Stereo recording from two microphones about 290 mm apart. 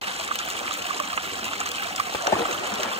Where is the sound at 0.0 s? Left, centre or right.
Centre.